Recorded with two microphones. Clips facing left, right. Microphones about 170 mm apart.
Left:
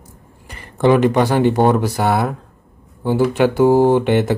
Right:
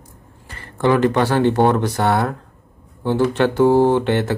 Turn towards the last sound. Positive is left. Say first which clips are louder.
# left 2 dB
turn(degrees=15)  # may be behind; listen again after turning